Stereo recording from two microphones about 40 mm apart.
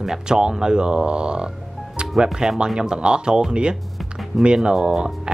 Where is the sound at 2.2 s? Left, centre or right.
Centre.